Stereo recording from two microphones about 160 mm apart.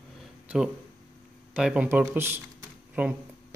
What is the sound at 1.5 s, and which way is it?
Speech, 5° right (ahead or behind).